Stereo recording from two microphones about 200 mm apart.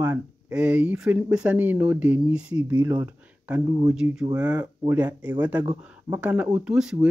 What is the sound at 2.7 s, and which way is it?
Speech, 20° right (ahead or behind).